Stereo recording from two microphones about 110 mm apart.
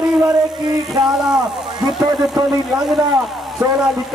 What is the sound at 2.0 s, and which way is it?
Speech, 25° right (ahead or behind).